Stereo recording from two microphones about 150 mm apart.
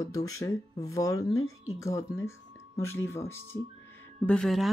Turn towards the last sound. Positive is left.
turn(degrees=5)  # may be behind; listen again after turning